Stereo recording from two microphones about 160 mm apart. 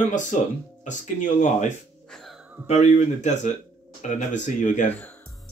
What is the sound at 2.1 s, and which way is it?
Music, centre (ahead or behind).